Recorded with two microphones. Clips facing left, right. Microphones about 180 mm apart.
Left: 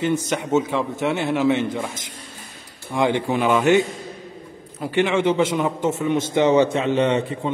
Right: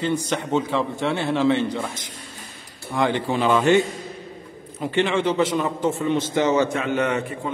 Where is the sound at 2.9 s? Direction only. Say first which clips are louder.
Left 2 dB; 15° left (ahead or behind).